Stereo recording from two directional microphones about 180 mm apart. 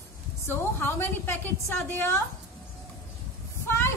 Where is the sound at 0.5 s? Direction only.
10° left (ahead or behind).